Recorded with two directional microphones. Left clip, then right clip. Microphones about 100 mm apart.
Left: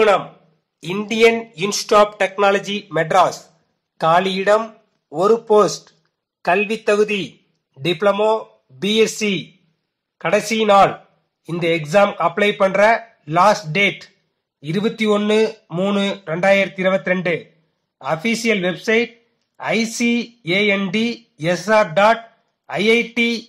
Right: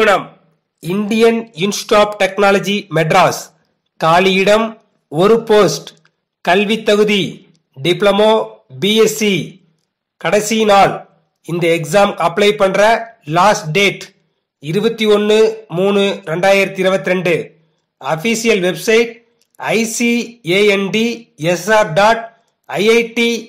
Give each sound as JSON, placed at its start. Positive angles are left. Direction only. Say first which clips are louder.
{"t": 1.0, "sound": "speech", "louder": "right 2 dB", "side_deg": -35}
{"t": 2.0, "sound": "speech", "louder": "right 2 dB", "side_deg": -45}
{"t": 15.6, "sound": "speech", "louder": "right 7 dB", "side_deg": -55}
{"t": 17.9, "sound": "speech", "louder": "right 4 dB", "side_deg": -80}
{"t": 19.5, "sound": "speech", "louder": "right 4 dB", "side_deg": -90}
{"t": 22.7, "sound": "speech", "louder": "right 4 dB", "side_deg": -75}